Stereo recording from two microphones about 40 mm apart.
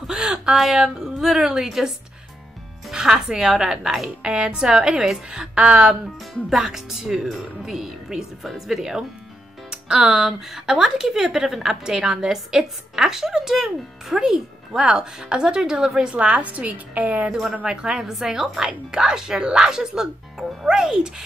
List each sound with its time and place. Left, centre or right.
0.0 s a sound: centre
1.4 s a woman's voice: centre
2.9 s music: centre
3.2 s a woman's voice: centre; by 17.3 s right
17.3 s a woman's voice: centre